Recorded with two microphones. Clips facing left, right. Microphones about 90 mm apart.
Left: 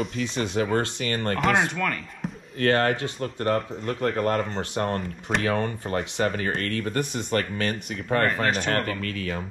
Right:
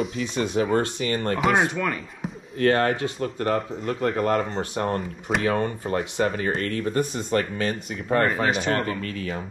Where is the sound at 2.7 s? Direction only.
30° right (ahead or behind).